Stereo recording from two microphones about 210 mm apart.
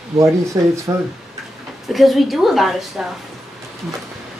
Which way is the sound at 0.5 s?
20° right (ahead or behind).